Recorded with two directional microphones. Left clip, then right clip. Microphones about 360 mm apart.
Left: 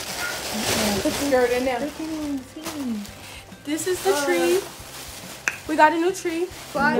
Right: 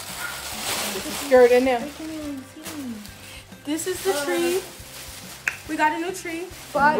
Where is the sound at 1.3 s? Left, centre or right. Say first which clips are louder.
Right 7 dB; right.